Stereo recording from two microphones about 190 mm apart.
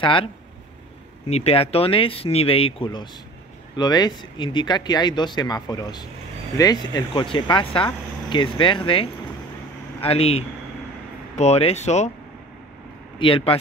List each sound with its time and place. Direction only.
0.0 s speech: 25° left (ahead or behind)
1.3 s speech: 30° left (ahead or behind)
13.2 s speech: 30° left (ahead or behind)